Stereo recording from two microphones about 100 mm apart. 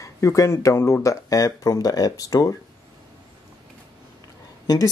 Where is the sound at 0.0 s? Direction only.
35° left (ahead or behind).